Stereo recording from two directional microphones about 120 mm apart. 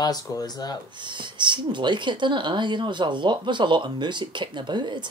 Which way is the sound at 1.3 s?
40° right (ahead or behind).